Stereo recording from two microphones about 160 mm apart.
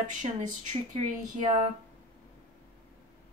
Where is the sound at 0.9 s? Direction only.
50° right (ahead or behind).